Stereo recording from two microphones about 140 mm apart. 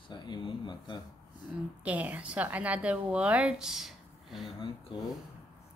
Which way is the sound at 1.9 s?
10° right (ahead or behind).